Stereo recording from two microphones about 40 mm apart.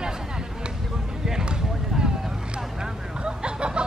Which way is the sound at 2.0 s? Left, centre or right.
Centre.